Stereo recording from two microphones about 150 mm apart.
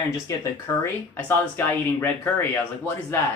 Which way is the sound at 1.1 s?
15° left (ahead or behind).